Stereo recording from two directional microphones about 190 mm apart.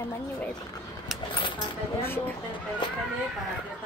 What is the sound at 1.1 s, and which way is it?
Speech, 25° left (ahead or behind).